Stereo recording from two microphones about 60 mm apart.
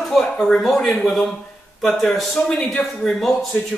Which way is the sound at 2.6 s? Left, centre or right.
Left.